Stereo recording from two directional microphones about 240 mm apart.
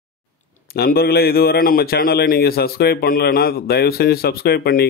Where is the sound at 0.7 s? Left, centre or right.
Left.